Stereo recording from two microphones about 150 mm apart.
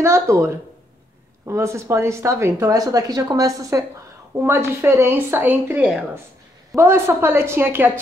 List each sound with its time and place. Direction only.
0.0 s a woman's voice: 20° right (ahead or behind)